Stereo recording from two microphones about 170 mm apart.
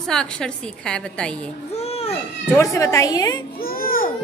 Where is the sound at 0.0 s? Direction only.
5° left (ahead or behind).